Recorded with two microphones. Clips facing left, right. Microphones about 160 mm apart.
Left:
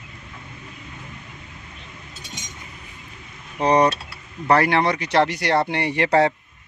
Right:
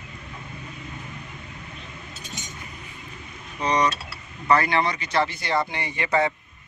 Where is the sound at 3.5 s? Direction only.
55° left (ahead or behind).